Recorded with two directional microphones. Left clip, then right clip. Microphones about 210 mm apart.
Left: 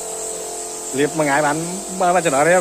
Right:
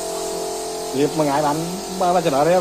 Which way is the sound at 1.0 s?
45° left (ahead or behind).